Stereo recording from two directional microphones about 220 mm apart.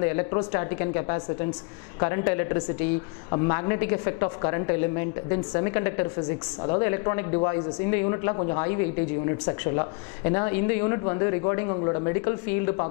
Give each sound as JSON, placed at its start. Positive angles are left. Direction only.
{"t": 0.0, "sound": "speech", "side_deg": 15}